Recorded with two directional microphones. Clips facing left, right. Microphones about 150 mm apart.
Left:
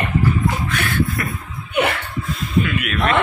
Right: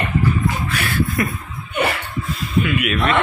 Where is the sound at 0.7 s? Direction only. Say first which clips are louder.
Left 1 dB; 10° right (ahead or behind).